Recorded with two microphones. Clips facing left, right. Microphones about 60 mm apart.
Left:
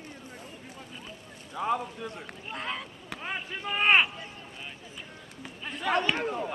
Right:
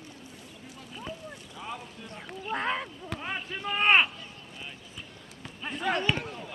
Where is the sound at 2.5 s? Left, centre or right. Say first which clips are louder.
Right 5 dB; right.